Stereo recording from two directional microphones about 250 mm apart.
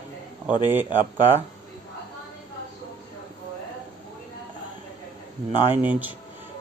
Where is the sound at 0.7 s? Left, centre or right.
Centre.